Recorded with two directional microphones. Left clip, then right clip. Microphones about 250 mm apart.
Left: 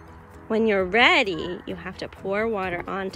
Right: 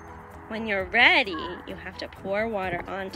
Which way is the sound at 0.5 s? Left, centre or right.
Centre.